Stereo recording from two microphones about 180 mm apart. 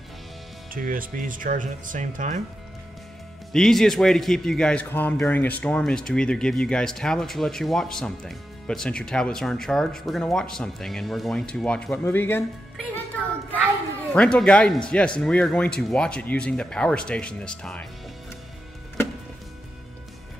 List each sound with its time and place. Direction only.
0.7 s speech: 50° right (ahead or behind)
3.5 s a man's voice: centre (ahead or behind)
14.1 s a man's voice: 5° left (ahead or behind)